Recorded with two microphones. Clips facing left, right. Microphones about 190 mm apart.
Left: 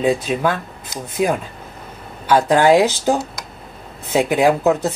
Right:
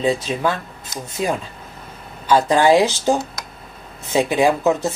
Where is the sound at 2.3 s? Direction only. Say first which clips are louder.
Left 1 dB; 10° left (ahead or behind).